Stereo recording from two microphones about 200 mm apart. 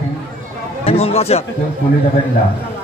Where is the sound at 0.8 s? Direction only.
30° left (ahead or behind).